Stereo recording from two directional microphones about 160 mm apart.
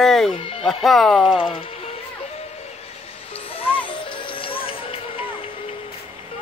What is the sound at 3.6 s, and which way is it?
Music, 35° left (ahead or behind).